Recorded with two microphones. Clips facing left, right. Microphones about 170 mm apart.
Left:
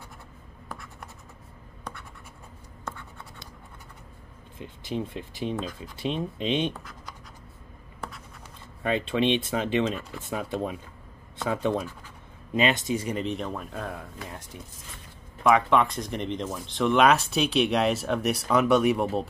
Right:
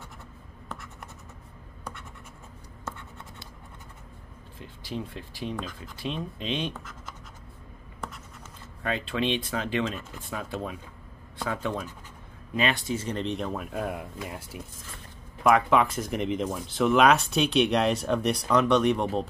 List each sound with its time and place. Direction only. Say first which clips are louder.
4.6 s speech: left 4 dB; 20° left (ahead or behind)
8.8 s speech: left 4 dB; 20° left (ahead or behind); by 19.2 s 5° left (ahead or behind)